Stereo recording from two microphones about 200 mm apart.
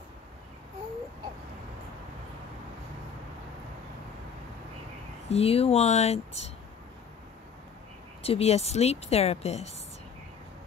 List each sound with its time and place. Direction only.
5.3 s a woman's voice: 30° left (ahead or behind)
8.2 s a woman's voice: 30° left (ahead or behind)